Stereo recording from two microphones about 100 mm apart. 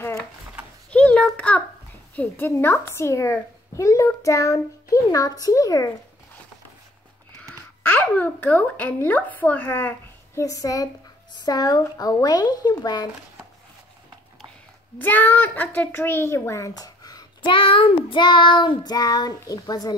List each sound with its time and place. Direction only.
0.8 s a sound: 10° left (ahead or behind)
2.1 s a child's voice: 20° left (ahead or behind); by 5.9 s 35° left (ahead or behind)
7.8 s speech: 15° left (ahead or behind)
10.4 s a child's voice: 35° left (ahead or behind)
15.0 s speech: 20° left (ahead or behind); by 17.3 s 40° left (ahead or behind)
17.5 s child singing: 60° left (ahead or behind)
18.2 s a child's voice: 50° left (ahead or behind)